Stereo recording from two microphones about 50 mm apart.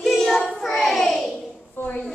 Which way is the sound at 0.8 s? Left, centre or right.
Centre.